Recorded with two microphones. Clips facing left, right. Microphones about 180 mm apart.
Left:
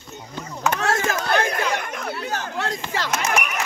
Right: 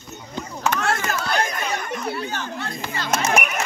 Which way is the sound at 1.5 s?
85° left.